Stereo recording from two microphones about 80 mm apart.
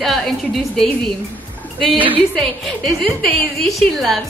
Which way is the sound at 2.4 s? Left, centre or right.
Centre.